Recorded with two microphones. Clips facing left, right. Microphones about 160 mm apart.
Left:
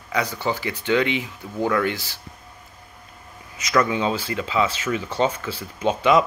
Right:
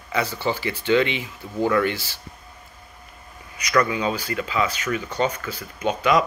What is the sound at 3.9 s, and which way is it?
Speech, 25° left (ahead or behind).